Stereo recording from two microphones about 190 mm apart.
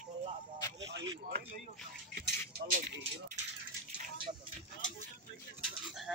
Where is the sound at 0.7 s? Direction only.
70° right (ahead or behind).